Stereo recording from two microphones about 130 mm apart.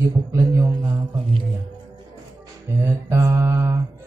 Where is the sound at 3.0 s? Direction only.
20° right (ahead or behind).